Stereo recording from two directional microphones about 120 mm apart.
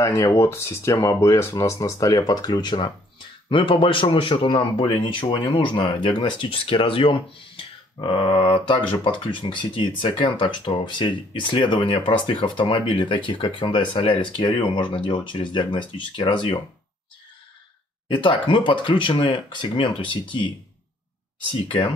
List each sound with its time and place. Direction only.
0.0 s speech: 25° left (ahead or behind); by 16.5 s 40° left (ahead or behind)
18.0 s speech: 40° left (ahead or behind)